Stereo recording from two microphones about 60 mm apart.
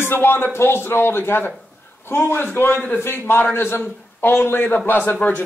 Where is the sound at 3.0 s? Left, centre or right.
Left.